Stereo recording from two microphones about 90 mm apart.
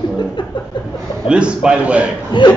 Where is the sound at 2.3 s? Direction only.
60° left (ahead or behind).